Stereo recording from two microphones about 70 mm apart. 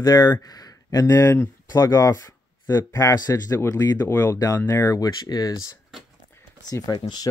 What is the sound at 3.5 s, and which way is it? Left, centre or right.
Speech, left.